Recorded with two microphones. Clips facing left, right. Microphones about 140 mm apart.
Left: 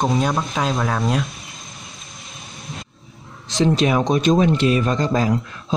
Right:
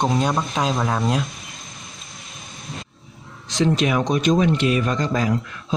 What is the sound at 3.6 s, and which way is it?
Speech, 30° left (ahead or behind).